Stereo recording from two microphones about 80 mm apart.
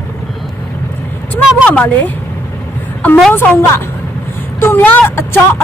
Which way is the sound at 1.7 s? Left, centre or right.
Centre.